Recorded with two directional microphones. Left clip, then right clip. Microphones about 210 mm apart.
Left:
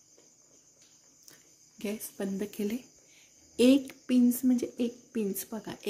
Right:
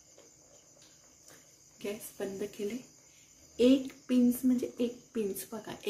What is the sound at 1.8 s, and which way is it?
Speech, 45° left (ahead or behind).